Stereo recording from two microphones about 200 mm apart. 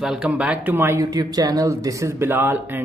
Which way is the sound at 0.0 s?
5° right (ahead or behind).